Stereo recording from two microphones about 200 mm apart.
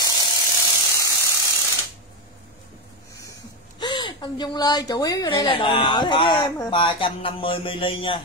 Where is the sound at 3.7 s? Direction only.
20° left (ahead or behind).